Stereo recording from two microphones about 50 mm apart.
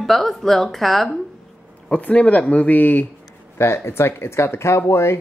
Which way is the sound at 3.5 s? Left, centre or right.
Left.